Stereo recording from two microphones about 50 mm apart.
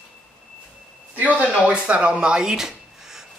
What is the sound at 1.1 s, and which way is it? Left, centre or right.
Speech, right.